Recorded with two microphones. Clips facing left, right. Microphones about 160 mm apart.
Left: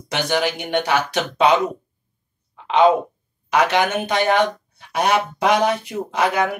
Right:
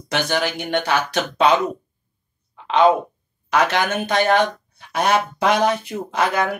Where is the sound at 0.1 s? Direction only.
15° left (ahead or behind).